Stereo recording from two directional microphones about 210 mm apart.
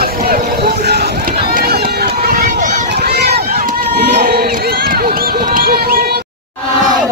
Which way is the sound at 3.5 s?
45° right (ahead or behind).